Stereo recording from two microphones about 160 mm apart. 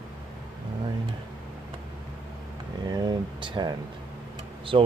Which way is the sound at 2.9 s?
30° right (ahead or behind).